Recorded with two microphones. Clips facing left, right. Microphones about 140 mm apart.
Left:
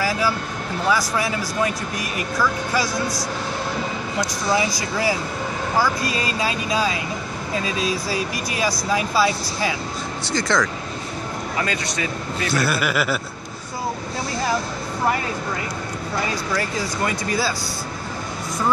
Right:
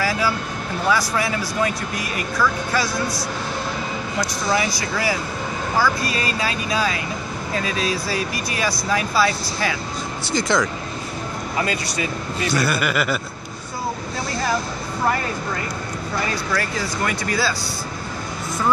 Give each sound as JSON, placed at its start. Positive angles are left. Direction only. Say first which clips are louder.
{"t": 0.8, "sound": "speech", "louder": "even", "side_deg": 20}
{"t": 4.2, "sound": "speech", "louder": "left 1 dB", "side_deg": 25}
{"t": 10.3, "sound": "speech", "louder": "right 1 dB", "side_deg": -10}
{"t": 12.4, "sound": "speech", "louder": "right 1 dB", "side_deg": 0}
{"t": 16.3, "sound": "speech", "louder": "even", "side_deg": 20}